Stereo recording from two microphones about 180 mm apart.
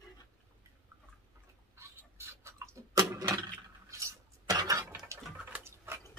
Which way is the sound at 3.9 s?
15° right (ahead or behind).